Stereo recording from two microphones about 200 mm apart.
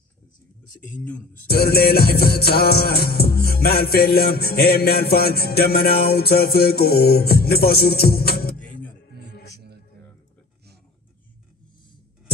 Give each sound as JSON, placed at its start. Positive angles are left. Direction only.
{"t": 0.9, "sound": "speech", "side_deg": 5}
{"t": 1.5, "sound": "music", "side_deg": 50}